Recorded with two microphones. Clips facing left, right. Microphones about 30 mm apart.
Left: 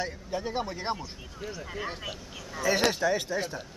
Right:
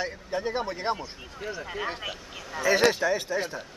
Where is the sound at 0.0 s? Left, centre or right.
Centre.